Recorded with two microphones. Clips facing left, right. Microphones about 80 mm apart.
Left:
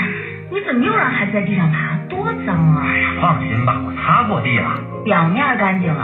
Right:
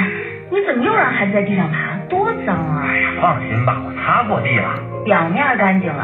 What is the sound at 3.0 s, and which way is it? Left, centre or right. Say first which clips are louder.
Speech: right 1 dB; centre.